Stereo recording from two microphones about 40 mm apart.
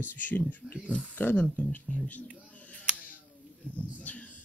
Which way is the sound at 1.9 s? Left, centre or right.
Left.